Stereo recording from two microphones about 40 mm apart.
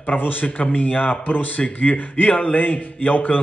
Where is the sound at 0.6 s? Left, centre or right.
Left.